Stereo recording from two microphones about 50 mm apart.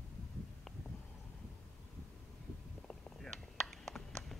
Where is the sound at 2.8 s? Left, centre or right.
Centre.